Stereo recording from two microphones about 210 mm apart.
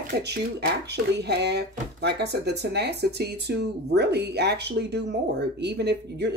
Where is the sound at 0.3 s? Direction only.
55° right (ahead or behind).